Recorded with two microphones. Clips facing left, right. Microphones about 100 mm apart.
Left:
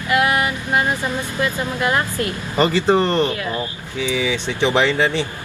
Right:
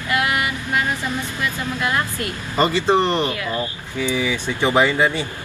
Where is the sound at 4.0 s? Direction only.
45° right (ahead or behind).